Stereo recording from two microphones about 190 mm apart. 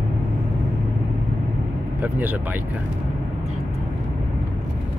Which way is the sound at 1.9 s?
10° right (ahead or behind).